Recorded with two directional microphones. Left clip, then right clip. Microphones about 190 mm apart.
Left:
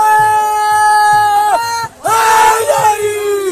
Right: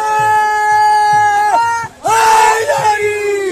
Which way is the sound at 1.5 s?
15° left (ahead or behind).